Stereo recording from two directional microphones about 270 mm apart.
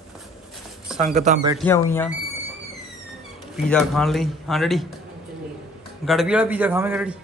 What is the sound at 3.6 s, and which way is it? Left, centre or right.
A man's voice, centre.